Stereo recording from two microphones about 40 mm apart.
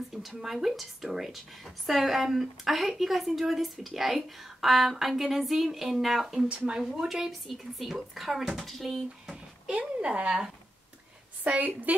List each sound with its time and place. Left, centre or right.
0.3 s a woman's voice: centre
10.0 s speech: right
11.4 s a woman's voice: right